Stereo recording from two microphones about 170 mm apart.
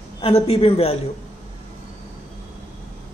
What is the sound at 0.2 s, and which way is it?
Speech, 35° left (ahead or behind).